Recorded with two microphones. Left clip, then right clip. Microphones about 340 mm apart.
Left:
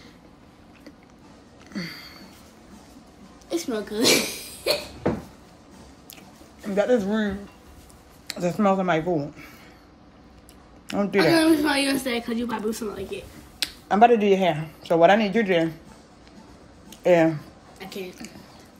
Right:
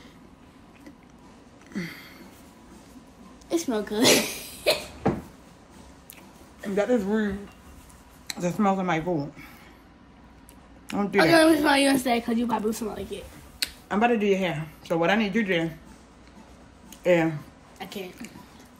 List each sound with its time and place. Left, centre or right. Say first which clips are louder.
1.7 s a sound: left 2 dB; centre
3.4 s hiccup: right 1 dB; right
6.7 s speech: left 3 dB; centre
8.3 s speech: left 3 dB; centre
10.9 s a woman's voice: left 3 dB; centre
11.1 s a woman's voice: right 1 dB; right
13.6 s speech: left 7 dB; centre
17.0 s speech: left 4 dB; centre
17.7 s a sound: left 1 dB; right